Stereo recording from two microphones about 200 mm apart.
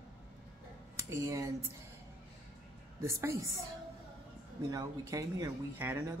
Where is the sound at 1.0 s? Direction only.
15° right (ahead or behind).